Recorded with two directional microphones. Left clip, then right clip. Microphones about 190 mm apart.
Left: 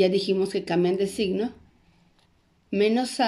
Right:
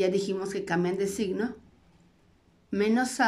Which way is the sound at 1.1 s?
15° left (ahead or behind).